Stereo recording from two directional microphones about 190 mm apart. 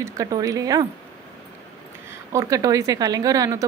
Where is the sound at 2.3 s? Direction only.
20° right (ahead or behind).